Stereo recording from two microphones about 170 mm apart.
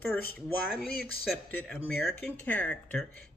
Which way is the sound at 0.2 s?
65° left (ahead or behind).